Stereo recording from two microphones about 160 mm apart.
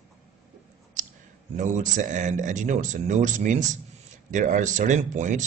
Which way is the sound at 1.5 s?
50° right (ahead or behind).